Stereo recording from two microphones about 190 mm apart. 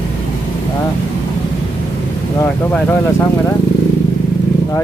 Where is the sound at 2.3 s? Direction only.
10° left (ahead or behind).